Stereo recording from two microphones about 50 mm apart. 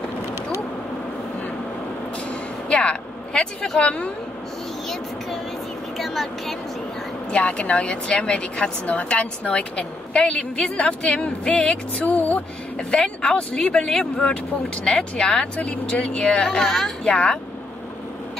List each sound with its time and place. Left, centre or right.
2.7 s vehicle: left
3.8 s speech: left
5.9 s speech: centre
7.2 s speech: left
12.7 s speech: centre
17.0 s speech: left